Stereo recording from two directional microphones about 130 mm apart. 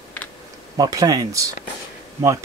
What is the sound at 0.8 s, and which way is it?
Speech, 30° right (ahead or behind).